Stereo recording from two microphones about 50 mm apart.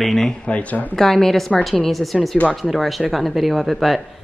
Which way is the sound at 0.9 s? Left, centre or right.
Centre.